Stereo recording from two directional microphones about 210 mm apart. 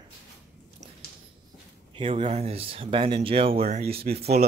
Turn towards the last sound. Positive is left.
turn(degrees=-50)  # may be behind; listen again after turning